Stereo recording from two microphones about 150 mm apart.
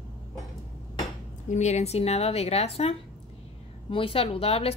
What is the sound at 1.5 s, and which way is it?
A woman's voice, 50° left (ahead or behind).